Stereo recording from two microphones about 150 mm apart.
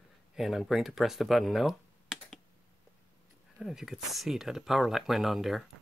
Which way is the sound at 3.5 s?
Centre (ahead or behind).